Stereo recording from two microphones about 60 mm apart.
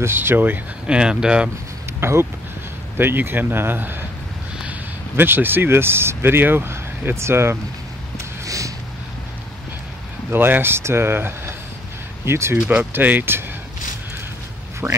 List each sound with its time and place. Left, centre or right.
0.0 s speech: right
0.8 s speech: centre
2.0 s speech: right
5.1 s speech: right
8.5 s a sound: right
10.3 s speech: right
12.6 s speech: right
14.8 s speech: right